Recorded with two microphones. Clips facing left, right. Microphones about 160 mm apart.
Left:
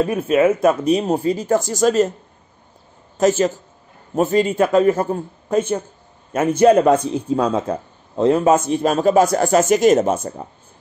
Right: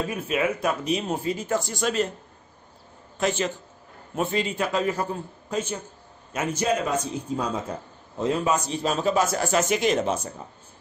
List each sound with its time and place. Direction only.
0.1 s speech: 45° left (ahead or behind)
3.2 s a man's voice: 45° left (ahead or behind); by 7.7 s 65° left (ahead or behind)
8.2 s a man's voice: 55° left (ahead or behind)